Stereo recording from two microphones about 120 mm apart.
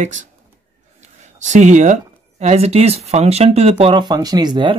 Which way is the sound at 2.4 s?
60° right (ahead or behind).